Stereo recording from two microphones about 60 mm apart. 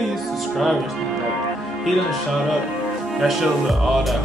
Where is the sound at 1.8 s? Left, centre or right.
Centre.